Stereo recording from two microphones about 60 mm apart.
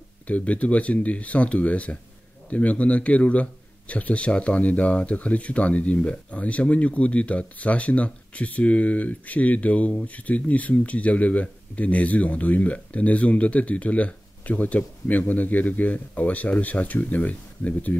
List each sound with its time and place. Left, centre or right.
0.3 s a man's voice: left